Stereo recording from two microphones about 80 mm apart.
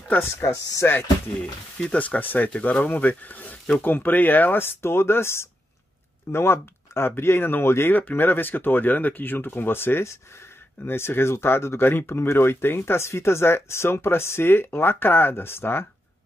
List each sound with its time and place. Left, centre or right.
0.4 s speech: left
1.8 s speech: centre; by 15.9 s left